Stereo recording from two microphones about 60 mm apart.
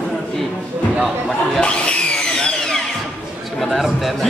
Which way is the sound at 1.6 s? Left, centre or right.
Centre.